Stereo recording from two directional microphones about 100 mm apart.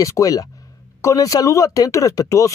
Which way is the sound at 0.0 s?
35° left (ahead or behind).